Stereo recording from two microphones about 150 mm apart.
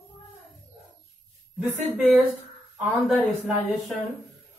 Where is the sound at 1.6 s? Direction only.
Centre (ahead or behind).